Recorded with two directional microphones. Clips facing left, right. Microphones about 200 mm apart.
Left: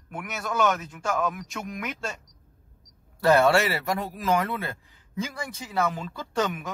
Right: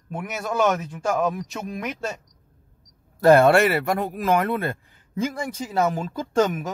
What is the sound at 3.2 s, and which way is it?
Speech, 50° right (ahead or behind).